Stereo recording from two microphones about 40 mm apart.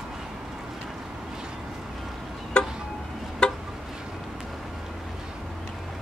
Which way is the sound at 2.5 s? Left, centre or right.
Left.